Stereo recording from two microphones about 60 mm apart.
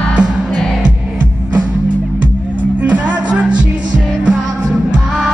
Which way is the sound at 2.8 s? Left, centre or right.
Right.